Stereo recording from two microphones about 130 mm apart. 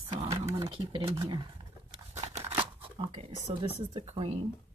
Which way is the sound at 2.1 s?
60° right (ahead or behind).